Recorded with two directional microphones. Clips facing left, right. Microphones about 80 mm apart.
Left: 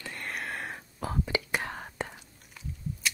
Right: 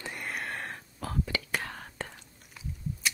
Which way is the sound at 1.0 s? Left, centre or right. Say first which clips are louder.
Left 2 dB; centre.